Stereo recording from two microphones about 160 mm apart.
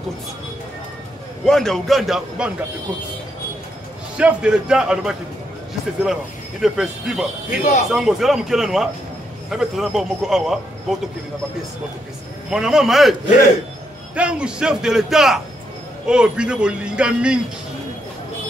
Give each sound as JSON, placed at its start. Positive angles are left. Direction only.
{"t": 1.4, "sound": "a man's voice", "side_deg": 5}
{"t": 4.2, "sound": "a man's voice", "side_deg": -5}
{"t": 6.6, "sound": "a man's voice", "side_deg": 0}
{"t": 7.4, "sound": "speech", "side_deg": 55}
{"t": 7.9, "sound": "a man's voice", "side_deg": 0}
{"t": 12.4, "sound": "a man's voice", "side_deg": -5}
{"t": 14.1, "sound": "a man's voice", "side_deg": -5}